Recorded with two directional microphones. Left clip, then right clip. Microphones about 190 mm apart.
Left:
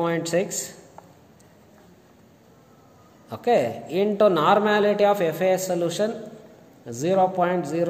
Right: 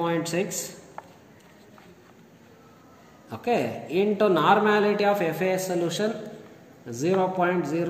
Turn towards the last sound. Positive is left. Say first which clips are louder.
# left 2 dB
turn(degrees=60)  # may be behind; listen again after turning